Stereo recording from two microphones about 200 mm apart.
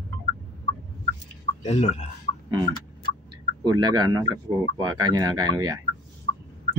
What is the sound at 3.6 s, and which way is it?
Speech, 20° right (ahead or behind).